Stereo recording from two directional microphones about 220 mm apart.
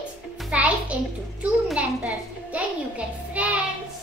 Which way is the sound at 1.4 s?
5° right (ahead or behind).